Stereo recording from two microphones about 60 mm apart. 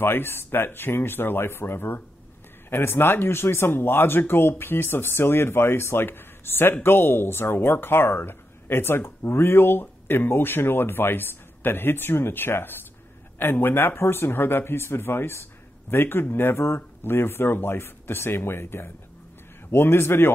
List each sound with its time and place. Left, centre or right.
0.0 s speech: left